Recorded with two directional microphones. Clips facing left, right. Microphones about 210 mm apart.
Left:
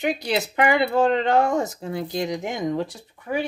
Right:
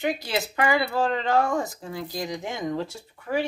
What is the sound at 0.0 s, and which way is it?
Speech, 20° left (ahead or behind).